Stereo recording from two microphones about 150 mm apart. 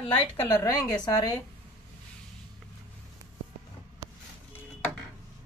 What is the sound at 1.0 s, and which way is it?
Speech, 25° left (ahead or behind).